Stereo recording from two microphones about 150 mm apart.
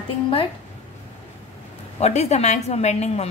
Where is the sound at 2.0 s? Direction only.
45° left (ahead or behind).